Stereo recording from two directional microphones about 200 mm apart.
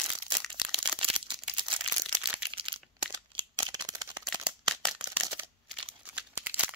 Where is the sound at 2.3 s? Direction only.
25° right (ahead or behind).